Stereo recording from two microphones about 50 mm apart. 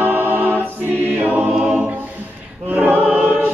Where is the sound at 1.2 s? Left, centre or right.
Right.